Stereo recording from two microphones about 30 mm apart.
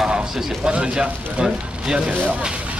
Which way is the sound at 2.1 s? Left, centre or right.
Right.